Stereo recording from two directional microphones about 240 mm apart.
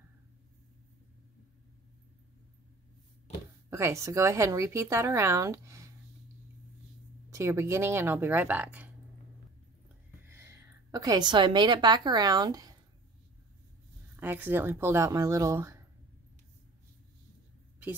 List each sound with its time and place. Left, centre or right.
3.7 s speech: centre
7.3 s speech: centre
10.2 s a woman's voice: centre
14.2 s speech: centre